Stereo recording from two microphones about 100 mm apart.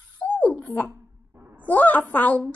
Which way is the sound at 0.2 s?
15° left (ahead or behind).